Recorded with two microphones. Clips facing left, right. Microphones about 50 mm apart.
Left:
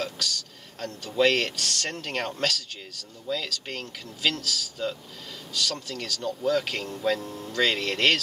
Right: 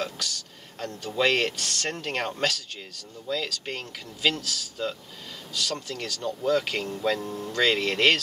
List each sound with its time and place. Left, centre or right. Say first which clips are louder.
0.7 s speech: left 2 dB; centre